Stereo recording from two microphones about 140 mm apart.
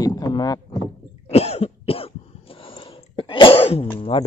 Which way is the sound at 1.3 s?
45° left (ahead or behind).